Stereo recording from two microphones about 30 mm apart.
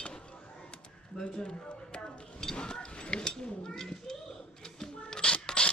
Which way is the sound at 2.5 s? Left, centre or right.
Left.